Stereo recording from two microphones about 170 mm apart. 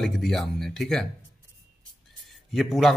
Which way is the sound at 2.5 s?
Centre (ahead or behind).